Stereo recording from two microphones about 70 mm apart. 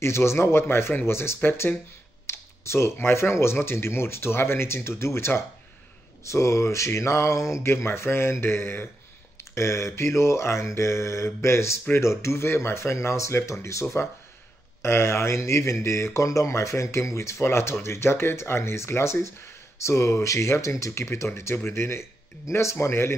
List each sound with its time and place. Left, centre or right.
0.0 s speech: left
2.2 s speech: left
6.2 s speech: left
9.6 s mantra: left
11.9 s speech: left